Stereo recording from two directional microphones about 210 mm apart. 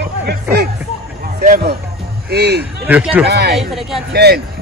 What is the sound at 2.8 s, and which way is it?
Speech, 10° right (ahead or behind).